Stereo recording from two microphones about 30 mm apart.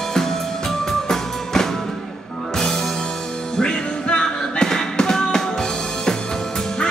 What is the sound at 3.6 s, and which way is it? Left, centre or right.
Music, left.